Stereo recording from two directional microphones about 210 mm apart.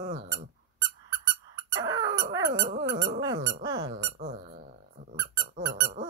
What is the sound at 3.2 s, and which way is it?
Squeak, 20° right (ahead or behind).